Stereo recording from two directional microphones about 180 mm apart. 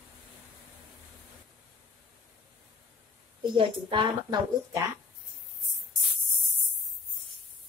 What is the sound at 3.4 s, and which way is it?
Speech, 25° right (ahead or behind).